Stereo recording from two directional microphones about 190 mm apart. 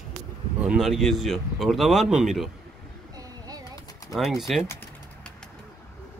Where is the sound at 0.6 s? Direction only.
5° right (ahead or behind).